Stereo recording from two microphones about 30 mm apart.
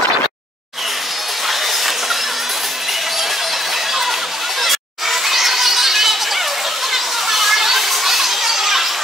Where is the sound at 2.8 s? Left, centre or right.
Centre.